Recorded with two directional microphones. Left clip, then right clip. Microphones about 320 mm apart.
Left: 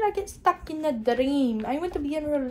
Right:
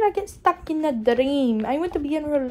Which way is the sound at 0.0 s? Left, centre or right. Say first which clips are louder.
Right 3 dB; right.